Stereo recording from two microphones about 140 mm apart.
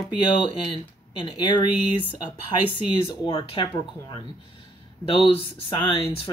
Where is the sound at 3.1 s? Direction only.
40° left (ahead or behind).